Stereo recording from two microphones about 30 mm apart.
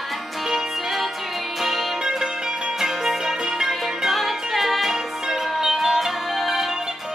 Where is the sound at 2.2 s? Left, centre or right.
Right.